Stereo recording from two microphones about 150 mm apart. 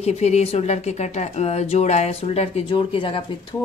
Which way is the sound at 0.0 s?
45° left (ahead or behind).